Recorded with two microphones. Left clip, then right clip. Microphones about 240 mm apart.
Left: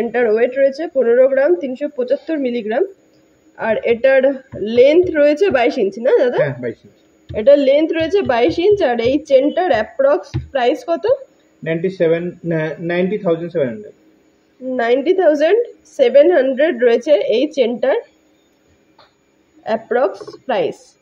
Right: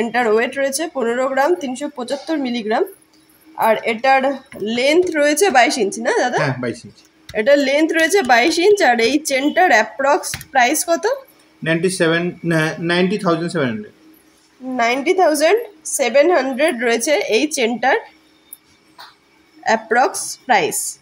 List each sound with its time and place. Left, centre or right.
0.0 s a woman's voice: centre
7.3 s a woman's voice: centre
11.6 s speech: right
14.8 s a woman's voice: centre
19.6 s a woman's voice: centre